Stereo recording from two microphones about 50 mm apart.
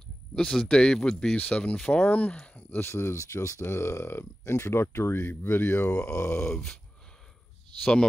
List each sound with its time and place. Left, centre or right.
0.3 s speech: centre
0.7 s groan: centre
1.3 s speech: left
2.7 s speech: left
3.7 s speech: left
5.2 s speech: left
6.0 s speech: left
6.4 s groan: centre
7.8 s groan: centre